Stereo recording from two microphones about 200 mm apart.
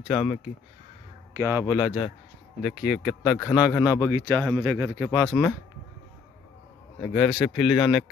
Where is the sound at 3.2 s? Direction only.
20° left (ahead or behind).